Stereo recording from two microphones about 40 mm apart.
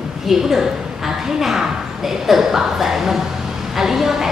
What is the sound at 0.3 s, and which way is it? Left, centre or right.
A woman's voice, centre.